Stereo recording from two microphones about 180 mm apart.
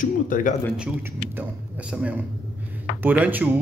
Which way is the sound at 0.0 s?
45° left (ahead or behind).